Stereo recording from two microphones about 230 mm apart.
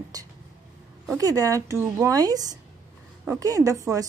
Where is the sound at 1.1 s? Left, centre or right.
Centre.